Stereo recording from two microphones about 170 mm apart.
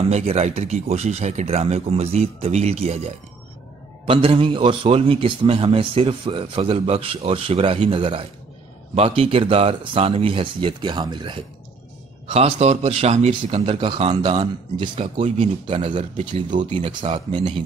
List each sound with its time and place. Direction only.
0.0 s a man's voice: 35° right (ahead or behind)
12.3 s a man's voice: 40° right (ahead or behind)